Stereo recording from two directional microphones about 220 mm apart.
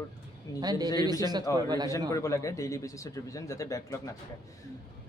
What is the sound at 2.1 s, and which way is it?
Speech, 15° left (ahead or behind).